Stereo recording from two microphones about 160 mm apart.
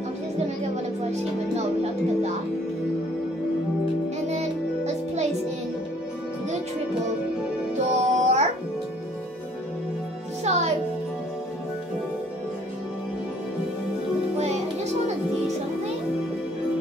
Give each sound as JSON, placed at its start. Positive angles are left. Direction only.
{"t": 1.5, "sound": "music", "side_deg": -45}
{"t": 4.3, "sound": "music", "side_deg": -45}
{"t": 8.0, "sound": "music", "side_deg": -45}
{"t": 10.4, "sound": "music", "side_deg": -45}